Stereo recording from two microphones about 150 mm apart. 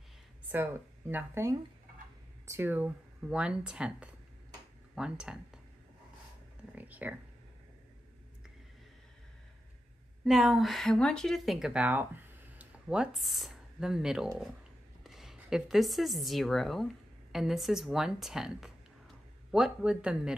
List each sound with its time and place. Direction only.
0.5 s speech: 15° right (ahead or behind)
6.7 s speech: 10° right (ahead or behind)
10.2 s speech: centre (ahead or behind)